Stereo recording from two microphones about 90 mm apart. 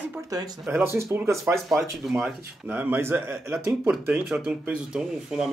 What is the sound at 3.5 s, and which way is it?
Speech, 5° right (ahead or behind).